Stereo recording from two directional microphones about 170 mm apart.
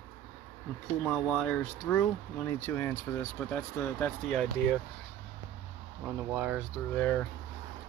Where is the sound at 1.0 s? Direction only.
5° left (ahead or behind).